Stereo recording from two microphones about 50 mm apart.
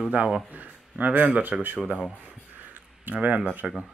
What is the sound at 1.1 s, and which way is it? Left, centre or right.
Speech, right.